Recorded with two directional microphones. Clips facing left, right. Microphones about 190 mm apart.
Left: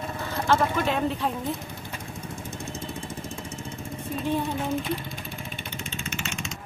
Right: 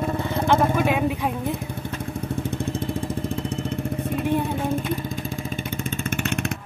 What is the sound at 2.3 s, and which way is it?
Vehicle, 60° right (ahead or behind).